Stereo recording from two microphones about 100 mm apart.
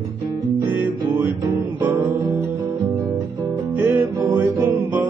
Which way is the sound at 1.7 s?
20° right (ahead or behind).